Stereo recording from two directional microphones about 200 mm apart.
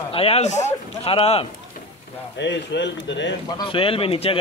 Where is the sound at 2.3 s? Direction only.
60° left (ahead or behind).